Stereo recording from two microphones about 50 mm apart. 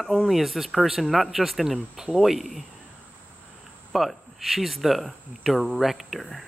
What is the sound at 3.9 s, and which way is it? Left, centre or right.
Speech, centre.